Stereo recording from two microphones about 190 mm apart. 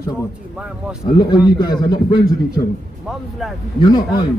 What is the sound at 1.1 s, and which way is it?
A man's voice, 25° left (ahead or behind).